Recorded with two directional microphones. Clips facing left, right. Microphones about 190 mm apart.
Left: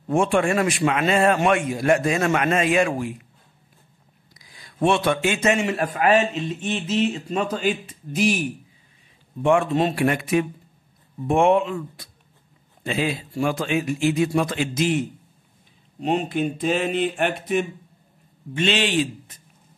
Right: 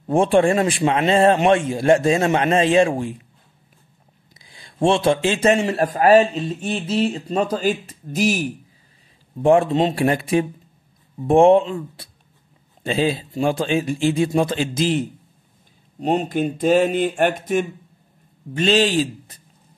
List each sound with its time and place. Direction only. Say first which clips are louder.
0.1 s a man's voice: right 4 dB; 30° right (ahead or behind)
4.3 s speech: right 2 dB; 30° right (ahead or behind)
9.8 s a man's voice: right 2 dB; 20° right (ahead or behind); by 19.4 s 35° right (ahead or behind)